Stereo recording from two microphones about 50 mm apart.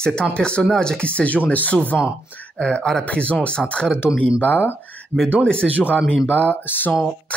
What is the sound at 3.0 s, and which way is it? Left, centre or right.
Speech, left.